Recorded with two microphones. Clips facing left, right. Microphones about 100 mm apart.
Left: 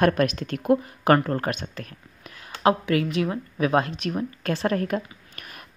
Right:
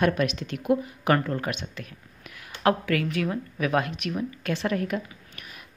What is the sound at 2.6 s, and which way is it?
A woman's voice, 20° left (ahead or behind).